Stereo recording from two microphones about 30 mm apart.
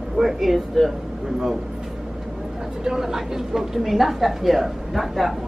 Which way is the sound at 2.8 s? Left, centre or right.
Centre.